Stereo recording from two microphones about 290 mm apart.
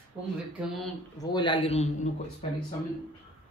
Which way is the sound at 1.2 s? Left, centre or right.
Centre.